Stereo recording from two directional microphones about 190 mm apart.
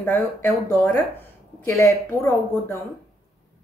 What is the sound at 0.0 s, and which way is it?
Speech, 10° left (ahead or behind).